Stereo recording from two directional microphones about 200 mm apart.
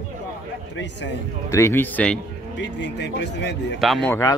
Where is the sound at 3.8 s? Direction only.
Centre (ahead or behind).